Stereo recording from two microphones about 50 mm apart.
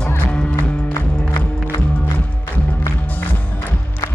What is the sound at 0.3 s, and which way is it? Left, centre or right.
Music, left.